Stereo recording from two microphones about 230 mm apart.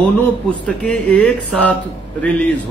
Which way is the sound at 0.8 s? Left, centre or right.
Centre.